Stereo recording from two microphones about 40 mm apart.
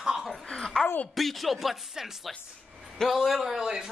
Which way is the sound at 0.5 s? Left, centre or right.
Centre.